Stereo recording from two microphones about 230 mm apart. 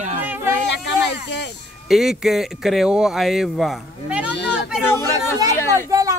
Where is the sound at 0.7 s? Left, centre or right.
Left.